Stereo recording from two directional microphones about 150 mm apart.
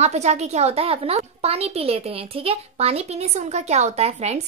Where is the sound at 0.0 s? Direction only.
45° right (ahead or behind).